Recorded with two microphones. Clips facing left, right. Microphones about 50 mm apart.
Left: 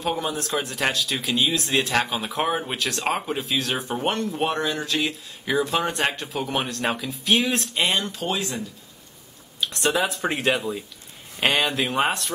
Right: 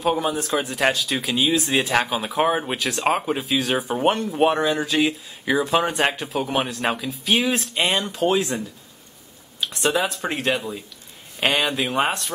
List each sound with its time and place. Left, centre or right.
0.0 s speech: centre
9.6 s speech: centre